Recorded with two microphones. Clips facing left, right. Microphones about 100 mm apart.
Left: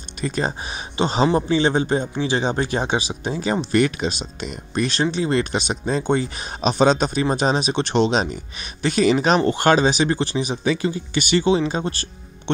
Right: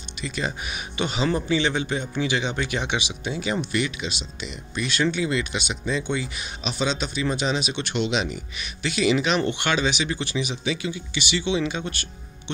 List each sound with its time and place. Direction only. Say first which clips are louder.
0.2 s a man's voice: left 5 dB; 40° left (ahead or behind)